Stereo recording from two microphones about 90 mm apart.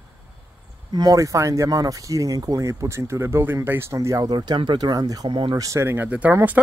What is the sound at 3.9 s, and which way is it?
Speech, 35° right (ahead or behind).